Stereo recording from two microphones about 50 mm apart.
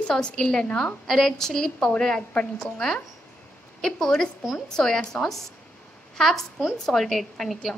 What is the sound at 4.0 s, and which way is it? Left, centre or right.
A woman's voice, centre.